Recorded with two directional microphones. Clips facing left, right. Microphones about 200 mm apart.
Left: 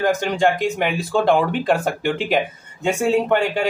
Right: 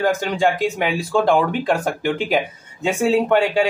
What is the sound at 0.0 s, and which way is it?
Speech, centre (ahead or behind).